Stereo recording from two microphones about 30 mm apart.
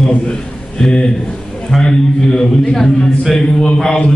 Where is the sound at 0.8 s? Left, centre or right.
Left; by 3.4 s centre.